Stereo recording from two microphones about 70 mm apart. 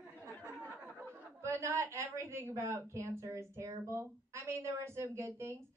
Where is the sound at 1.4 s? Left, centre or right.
Right.